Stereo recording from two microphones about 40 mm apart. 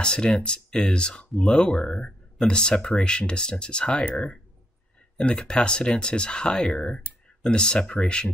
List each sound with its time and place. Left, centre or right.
0.0 s speech: left
5.2 s speech: left